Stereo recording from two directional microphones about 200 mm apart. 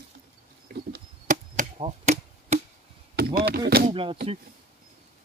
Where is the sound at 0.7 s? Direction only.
50° right (ahead or behind); by 2.6 s 30° right (ahead or behind).